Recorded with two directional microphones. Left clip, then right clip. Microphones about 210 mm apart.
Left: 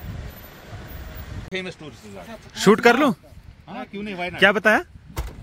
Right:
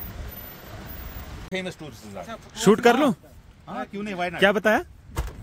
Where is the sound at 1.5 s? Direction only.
60° right (ahead or behind).